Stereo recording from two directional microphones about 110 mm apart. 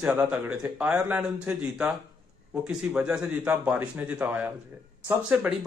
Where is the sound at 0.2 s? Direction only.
15° right (ahead or behind).